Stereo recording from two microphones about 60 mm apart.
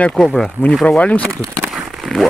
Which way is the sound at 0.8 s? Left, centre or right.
Left.